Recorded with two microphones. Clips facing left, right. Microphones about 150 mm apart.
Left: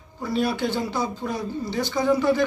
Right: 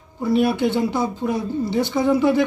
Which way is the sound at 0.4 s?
25° right (ahead or behind).